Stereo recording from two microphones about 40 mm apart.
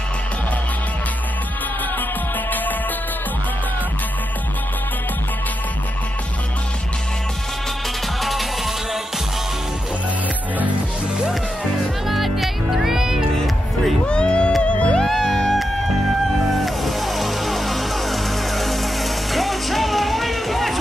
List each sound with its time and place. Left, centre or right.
8.2 s music: centre
12.1 s music: centre
14.0 s a sound: left
14.6 s music: left
15.0 s music: centre
16.6 s music: centre